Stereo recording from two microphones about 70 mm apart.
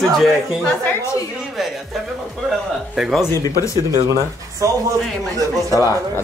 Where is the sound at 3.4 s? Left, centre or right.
Left.